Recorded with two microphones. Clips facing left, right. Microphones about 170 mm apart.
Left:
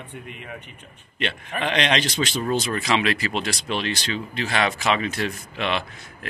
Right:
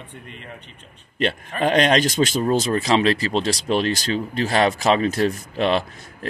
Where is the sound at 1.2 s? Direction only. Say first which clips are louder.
Right 5 dB; 40° right (ahead or behind).